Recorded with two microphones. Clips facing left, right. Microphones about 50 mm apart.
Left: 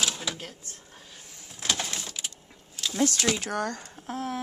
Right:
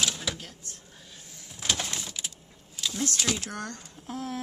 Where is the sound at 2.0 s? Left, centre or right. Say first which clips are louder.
Even; centre.